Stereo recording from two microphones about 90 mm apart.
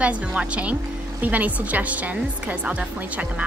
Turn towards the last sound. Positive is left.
turn(degrees=-15)  # may be behind; listen again after turning